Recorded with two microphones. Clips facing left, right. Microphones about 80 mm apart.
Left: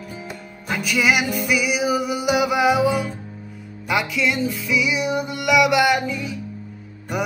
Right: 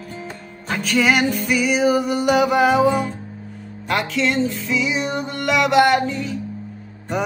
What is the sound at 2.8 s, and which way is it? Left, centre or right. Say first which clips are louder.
Music: right 3 dB; right.